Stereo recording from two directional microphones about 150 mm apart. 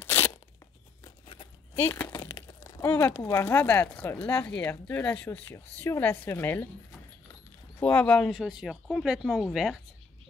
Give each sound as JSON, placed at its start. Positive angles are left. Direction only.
{"t": 0.0, "sound": "crunch", "side_deg": 15}
{"t": 1.2, "sound": "a sound", "side_deg": 35}
{"t": 1.8, "sound": "speech", "side_deg": 15}
{"t": 7.8, "sound": "speech", "side_deg": 10}